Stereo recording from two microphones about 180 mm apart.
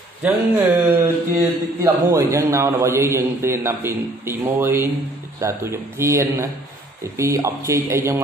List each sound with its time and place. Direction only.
0.2 s a man's voice: 10° right (ahead or behind)